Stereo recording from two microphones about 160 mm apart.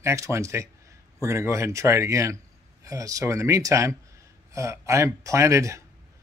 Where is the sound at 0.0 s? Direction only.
20° right (ahead or behind).